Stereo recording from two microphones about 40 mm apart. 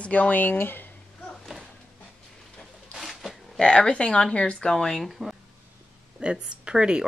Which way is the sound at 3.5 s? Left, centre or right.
Left.